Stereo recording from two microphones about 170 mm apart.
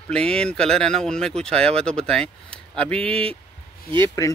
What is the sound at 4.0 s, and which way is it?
Speech, 20° left (ahead or behind).